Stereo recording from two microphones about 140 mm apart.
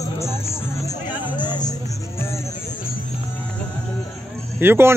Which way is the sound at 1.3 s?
30° left (ahead or behind).